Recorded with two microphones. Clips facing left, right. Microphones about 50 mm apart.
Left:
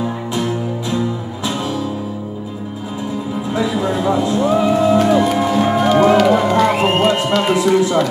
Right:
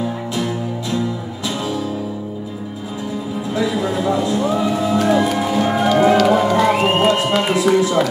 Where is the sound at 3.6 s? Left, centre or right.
Centre.